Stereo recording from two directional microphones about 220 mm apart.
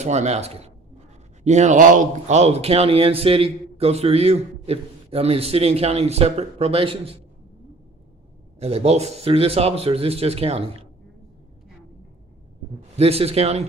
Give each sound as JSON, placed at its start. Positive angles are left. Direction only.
{"t": 0.0, "sound": "speech", "side_deg": -30}
{"t": 8.5, "sound": "speech", "side_deg": -30}
{"t": 12.9, "sound": "speech", "side_deg": -30}